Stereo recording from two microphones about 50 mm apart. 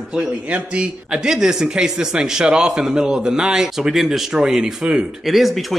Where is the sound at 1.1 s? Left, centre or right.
Centre.